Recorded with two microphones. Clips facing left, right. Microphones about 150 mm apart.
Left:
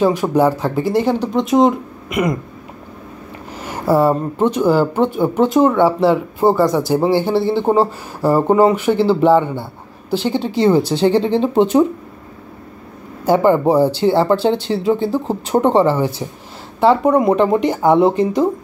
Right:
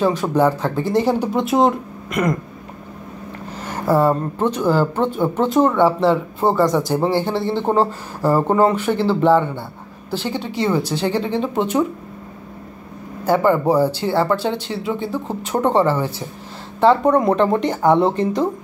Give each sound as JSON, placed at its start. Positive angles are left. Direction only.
{"t": 0.0, "sound": "speech", "side_deg": 15}
{"t": 1.0, "sound": "speech", "side_deg": -5}
{"t": 3.6, "sound": "speech", "side_deg": 10}
{"t": 10.3, "sound": "speech", "side_deg": 30}
{"t": 13.3, "sound": "speech", "side_deg": 20}
{"t": 15.6, "sound": "speech", "side_deg": 15}